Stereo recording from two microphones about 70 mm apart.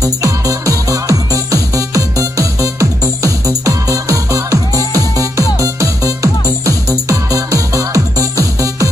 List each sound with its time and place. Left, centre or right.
0.0 s music: right